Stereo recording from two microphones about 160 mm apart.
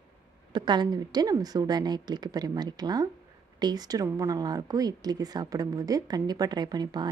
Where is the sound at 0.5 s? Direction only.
30° right (ahead or behind).